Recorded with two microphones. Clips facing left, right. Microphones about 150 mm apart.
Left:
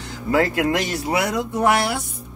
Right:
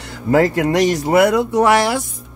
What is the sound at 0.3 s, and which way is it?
Speech, 40° right (ahead or behind).